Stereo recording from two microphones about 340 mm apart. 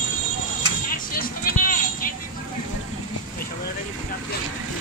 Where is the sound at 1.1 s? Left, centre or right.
Left.